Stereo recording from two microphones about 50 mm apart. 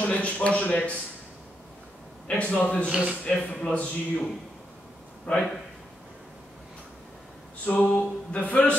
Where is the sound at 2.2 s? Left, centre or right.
Left.